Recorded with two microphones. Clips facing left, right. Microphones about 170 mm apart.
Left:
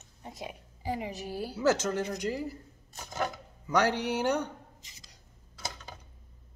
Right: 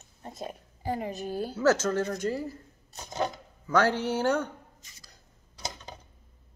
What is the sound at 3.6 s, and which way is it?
Speech, 15° left (ahead or behind).